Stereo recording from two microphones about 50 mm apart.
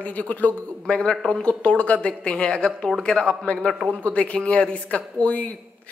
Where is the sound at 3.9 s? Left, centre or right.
Left.